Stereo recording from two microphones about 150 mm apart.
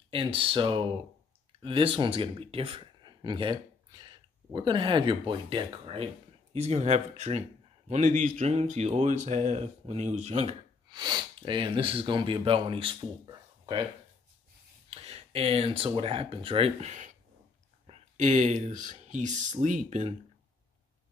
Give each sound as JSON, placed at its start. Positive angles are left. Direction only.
{"t": 0.1, "sound": "speech", "side_deg": -35}
{"t": 7.9, "sound": "speech", "side_deg": -60}
{"t": 8.4, "sound": "speech", "side_deg": -45}
{"t": 10.9, "sound": "speech", "side_deg": -30}
{"t": 14.9, "sound": "speech", "side_deg": -45}